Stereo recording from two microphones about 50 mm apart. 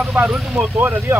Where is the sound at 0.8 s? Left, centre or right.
Right.